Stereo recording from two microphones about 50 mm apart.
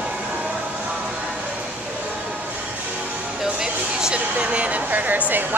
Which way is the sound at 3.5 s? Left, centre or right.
Centre.